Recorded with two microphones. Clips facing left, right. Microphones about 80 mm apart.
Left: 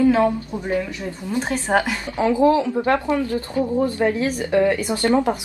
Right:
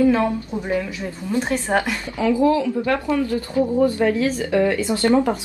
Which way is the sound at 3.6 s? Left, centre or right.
Centre.